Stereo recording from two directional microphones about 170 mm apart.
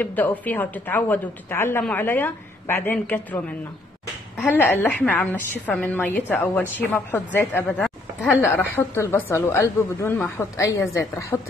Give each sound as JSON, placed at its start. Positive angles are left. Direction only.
{"t": 0.0, "sound": "a woman's voice", "side_deg": 10}
{"t": 4.5, "sound": "a woman's voice", "side_deg": 10}
{"t": 7.8, "sound": "a sound", "side_deg": 10}
{"t": 8.5, "sound": "a woman's voice", "side_deg": 15}